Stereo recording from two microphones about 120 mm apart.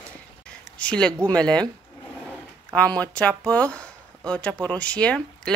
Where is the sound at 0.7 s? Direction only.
10° left (ahead or behind).